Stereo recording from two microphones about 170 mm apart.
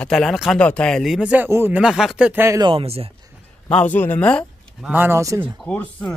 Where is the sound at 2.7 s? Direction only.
35° right (ahead or behind).